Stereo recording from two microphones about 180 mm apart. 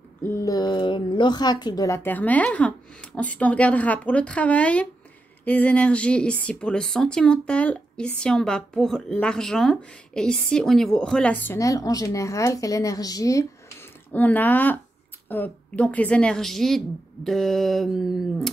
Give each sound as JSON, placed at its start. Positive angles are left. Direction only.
{"t": 0.2, "sound": "a woman's voice", "side_deg": 15}
{"t": 2.0, "sound": "a woman's voice", "side_deg": 10}